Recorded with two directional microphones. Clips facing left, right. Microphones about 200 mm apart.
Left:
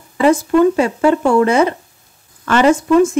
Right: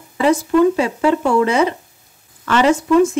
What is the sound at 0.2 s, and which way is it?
Speech, 50° left (ahead or behind).